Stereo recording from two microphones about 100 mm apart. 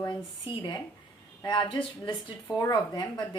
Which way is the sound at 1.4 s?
55° left (ahead or behind).